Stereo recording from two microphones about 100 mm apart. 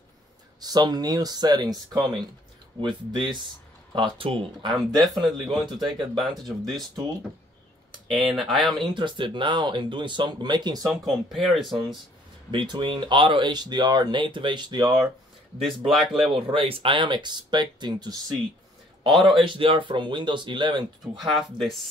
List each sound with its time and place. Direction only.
0.6 s speech: 40° right (ahead or behind); by 4.7 s 65° right (ahead or behind)
4.7 s speech: centre (ahead or behind)
5.1 s speech: 45° right (ahead or behind)
6.1 s speech: centre (ahead or behind)
8.1 s speech: centre (ahead or behind)
8.8 s speech: 55° right (ahead or behind)
10.9 s speech: centre (ahead or behind)
12.4 s speech: 55° right (ahead or behind)
15.6 s speech: centre (ahead or behind)
16.3 s speech: 65° right (ahead or behind); by 18.1 s 50° right (ahead or behind)
19.2 s speech: 55° right (ahead or behind)
21.0 s speech: centre (ahead or behind)